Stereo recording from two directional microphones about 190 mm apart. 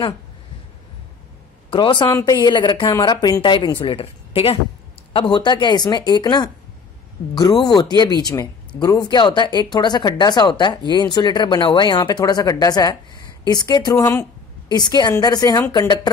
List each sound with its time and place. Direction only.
1.7 s a woman's voice: 25° left (ahead or behind)